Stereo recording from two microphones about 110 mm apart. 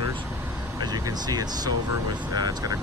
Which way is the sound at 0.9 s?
35° right (ahead or behind).